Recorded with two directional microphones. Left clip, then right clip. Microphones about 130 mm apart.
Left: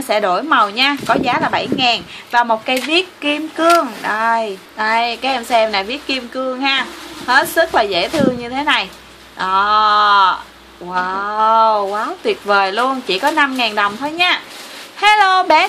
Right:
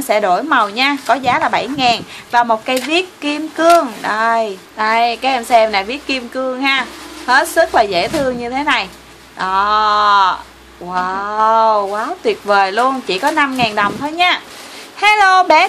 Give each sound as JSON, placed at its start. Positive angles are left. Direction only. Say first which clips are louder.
{"t": 0.1, "sound": "a woman's voice", "louder": "right 1 dB", "side_deg": -5}